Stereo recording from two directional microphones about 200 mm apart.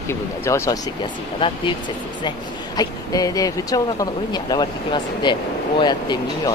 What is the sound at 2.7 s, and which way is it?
Speech, 15° left (ahead or behind).